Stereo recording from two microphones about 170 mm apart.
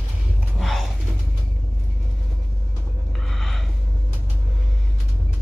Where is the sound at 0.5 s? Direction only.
Centre (ahead or behind).